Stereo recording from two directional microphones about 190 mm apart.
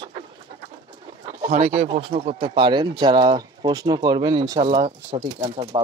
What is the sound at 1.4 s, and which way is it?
Speech, 35° right (ahead or behind).